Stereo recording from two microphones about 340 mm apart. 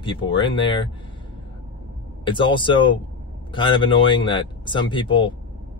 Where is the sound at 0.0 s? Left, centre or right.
Centre.